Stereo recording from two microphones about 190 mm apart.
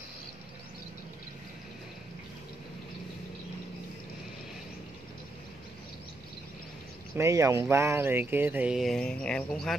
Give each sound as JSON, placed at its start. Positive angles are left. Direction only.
{"t": 7.2, "sound": "speech", "side_deg": -15}